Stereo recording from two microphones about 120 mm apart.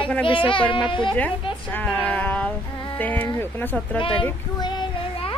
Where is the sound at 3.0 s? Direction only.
15° left (ahead or behind).